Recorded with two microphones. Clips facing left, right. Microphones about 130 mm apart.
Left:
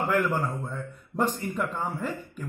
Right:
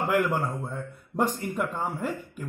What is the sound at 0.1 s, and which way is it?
A man's voice, 10° right (ahead or behind).